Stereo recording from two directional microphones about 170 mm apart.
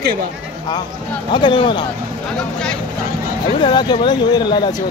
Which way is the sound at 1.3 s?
30° left (ahead or behind).